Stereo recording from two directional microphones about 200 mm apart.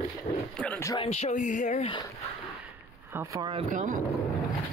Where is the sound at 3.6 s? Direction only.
40° right (ahead or behind).